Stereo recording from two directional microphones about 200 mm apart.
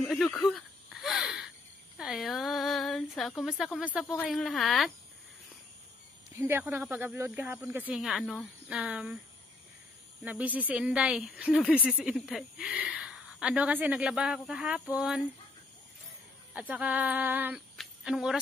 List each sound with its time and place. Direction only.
0.0 s a sound: centre (ahead or behind)
2.0 s speech: centre (ahead or behind)
4.0 s speech: 10° left (ahead or behind)
6.3 s speech: 10° right (ahead or behind)
10.2 s speech: 5° right (ahead or behind)
16.5 s speech: 5° right (ahead or behind)
17.7 s a sound: centre (ahead or behind)